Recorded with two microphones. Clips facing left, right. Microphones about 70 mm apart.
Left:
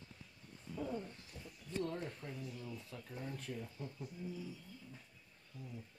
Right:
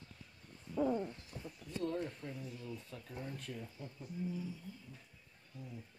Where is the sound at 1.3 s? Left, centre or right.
Right.